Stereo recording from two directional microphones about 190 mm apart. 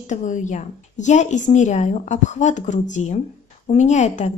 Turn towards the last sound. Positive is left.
turn(degrees=40)  # may be behind; listen again after turning